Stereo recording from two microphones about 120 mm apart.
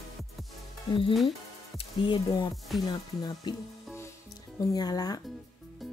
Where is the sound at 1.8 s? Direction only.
50° left (ahead or behind); by 3.5 s 30° left (ahead or behind).